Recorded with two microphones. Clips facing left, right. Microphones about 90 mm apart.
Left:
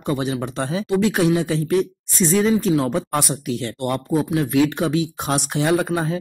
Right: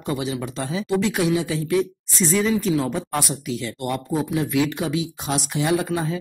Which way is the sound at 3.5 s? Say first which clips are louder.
Left 3 dB; 55° left (ahead or behind).